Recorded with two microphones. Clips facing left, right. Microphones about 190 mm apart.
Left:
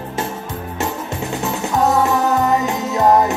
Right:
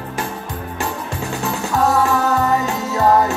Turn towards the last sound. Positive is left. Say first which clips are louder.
# left 1 dB
turn(degrees=20)  # may be behind; listen again after turning